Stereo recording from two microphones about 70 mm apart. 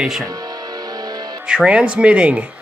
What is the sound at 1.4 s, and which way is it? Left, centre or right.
Speech, centre.